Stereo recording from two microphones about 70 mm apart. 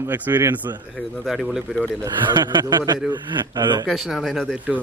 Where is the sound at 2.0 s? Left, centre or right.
Right.